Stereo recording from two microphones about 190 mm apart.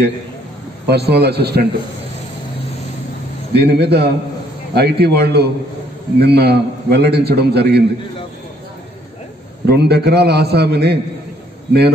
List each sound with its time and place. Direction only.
0.8 s a man's voice: 60° right (ahead or behind)
3.5 s a man's voice: 60° right (ahead or behind)
9.7 s a man's voice: 60° right (ahead or behind)